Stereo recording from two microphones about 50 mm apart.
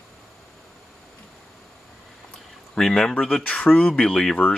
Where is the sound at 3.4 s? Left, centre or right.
Left.